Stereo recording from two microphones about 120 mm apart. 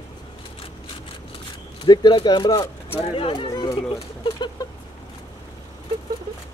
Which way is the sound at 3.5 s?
35° left (ahead or behind).